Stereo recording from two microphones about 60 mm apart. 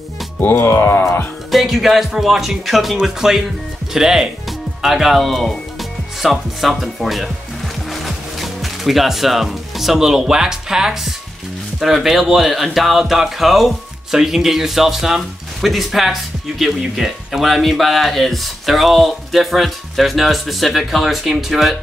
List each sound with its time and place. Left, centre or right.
0.6 s speech: left
1.5 s speech: centre